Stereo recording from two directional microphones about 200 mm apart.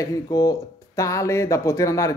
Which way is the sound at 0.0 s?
15° left (ahead or behind).